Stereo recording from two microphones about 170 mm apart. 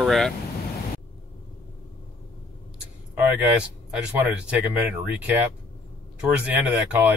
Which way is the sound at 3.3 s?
5° right (ahead or behind).